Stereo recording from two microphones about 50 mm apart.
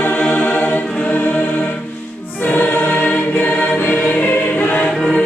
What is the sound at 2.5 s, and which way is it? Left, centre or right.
Choir, left.